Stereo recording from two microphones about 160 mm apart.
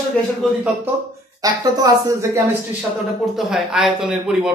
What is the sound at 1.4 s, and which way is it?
A man's voice, 25° right (ahead or behind).